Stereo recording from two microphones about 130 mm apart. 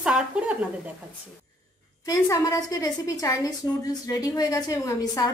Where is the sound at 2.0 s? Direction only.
30° left (ahead or behind).